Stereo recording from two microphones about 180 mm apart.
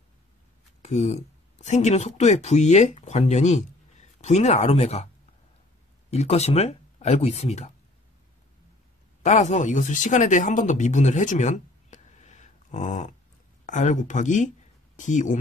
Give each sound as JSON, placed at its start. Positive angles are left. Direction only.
{"t": 0.8, "sound": "speech", "side_deg": 40}
{"t": 9.2, "sound": "speech", "side_deg": 40}